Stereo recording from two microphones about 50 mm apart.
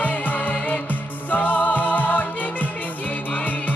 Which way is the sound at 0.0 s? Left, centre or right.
Left.